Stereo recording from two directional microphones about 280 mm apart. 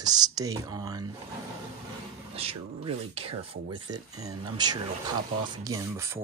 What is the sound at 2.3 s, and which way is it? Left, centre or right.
Speech, right.